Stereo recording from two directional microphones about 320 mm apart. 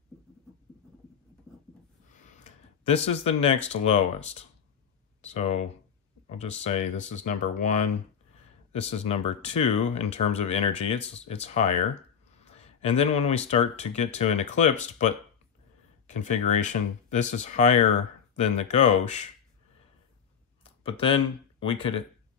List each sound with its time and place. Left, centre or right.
2.1 s speech: left
20.6 s speech: centre